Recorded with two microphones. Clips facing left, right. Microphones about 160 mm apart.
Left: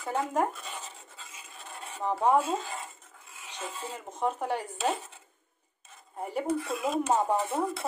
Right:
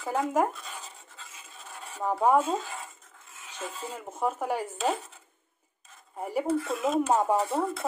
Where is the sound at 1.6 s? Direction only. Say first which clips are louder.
Right 1 dB; 5° right (ahead or behind).